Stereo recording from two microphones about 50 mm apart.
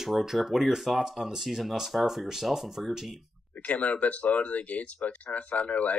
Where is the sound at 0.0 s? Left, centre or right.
Centre.